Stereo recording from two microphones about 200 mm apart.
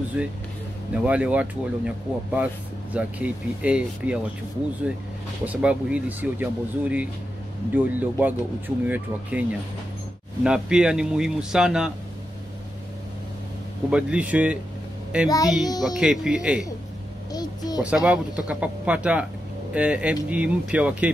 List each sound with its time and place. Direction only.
0.2 s speech: 5° right (ahead or behind)
5.4 s speech: 5° right (ahead or behind)
13.8 s speech: 5° right (ahead or behind)
15.2 s a woman's voice: 20° left (ahead or behind)
15.8 s speech: 5° right (ahead or behind)
17.3 s a sound: 20° left (ahead or behind)
17.8 s speech: 5° right (ahead or behind)